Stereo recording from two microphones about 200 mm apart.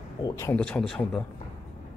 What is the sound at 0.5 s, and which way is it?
Speech, 5° left (ahead or behind).